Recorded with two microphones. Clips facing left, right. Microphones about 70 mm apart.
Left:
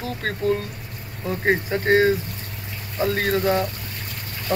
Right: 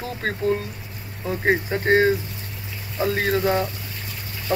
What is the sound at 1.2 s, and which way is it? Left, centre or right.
Speech, centre.